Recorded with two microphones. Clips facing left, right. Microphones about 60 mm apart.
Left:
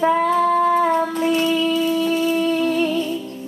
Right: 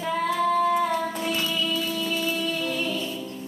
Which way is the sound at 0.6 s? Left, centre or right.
Left.